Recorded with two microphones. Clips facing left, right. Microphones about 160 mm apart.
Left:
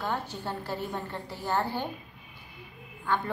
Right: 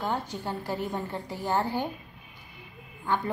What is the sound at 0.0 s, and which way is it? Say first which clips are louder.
A woman's voice: right 2 dB; 15° right (ahead or behind).